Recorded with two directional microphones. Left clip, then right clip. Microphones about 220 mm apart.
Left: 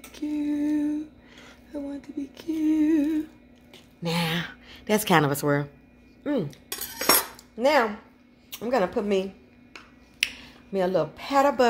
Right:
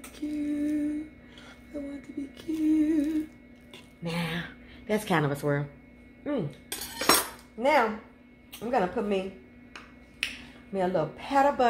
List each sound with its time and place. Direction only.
0.1 s lullaby: 40° left (ahead or behind)
1.7 s a sound: 35° left (ahead or behind)
4.0 s a sound: 50° left (ahead or behind)
6.7 s cutlery: 30° left (ahead or behind)
7.5 s speech: 50° left (ahead or behind)
10.2 s speech: 50° left (ahead or behind)